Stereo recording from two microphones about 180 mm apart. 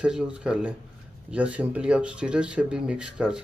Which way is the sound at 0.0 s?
5° right (ahead or behind).